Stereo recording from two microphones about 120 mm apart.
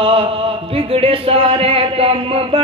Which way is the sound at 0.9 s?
50° right (ahead or behind).